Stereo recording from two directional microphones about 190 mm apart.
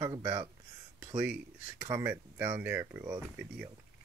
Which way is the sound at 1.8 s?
10° right (ahead or behind).